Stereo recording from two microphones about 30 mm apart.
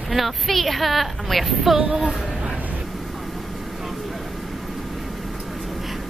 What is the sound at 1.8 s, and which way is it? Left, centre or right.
Speech, right.